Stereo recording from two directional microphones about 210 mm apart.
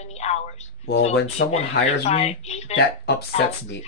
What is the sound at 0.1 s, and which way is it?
Speech, 30° left (ahead or behind).